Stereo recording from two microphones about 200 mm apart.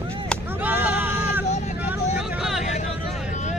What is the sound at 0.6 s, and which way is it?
Hubbub, 10° right (ahead or behind).